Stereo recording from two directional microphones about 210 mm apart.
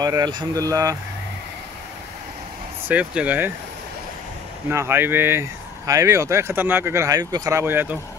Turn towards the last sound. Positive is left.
turn(degrees=-10)  # may be behind; listen again after turning